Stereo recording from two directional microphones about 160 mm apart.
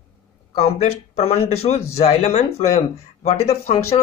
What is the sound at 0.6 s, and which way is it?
Speech, 40° left (ahead or behind).